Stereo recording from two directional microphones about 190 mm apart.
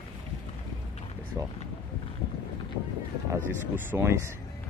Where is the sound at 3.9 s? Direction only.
15° right (ahead or behind).